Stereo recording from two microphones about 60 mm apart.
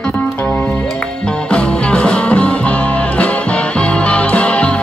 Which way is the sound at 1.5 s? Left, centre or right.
Centre.